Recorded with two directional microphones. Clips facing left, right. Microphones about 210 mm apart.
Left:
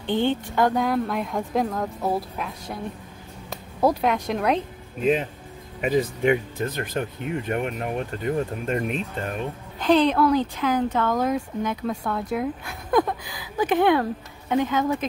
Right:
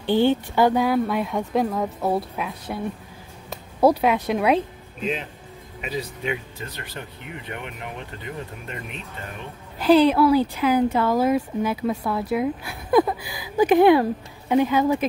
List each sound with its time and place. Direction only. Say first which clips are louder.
0.0 s speech: right 4 dB; 5° right (ahead or behind)
5.8 s speech: left 8 dB; 50° left (ahead or behind)
9.8 s speech: right 3 dB; 5° right (ahead or behind)